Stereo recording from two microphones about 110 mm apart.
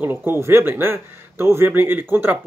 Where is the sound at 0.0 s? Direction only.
20° right (ahead or behind).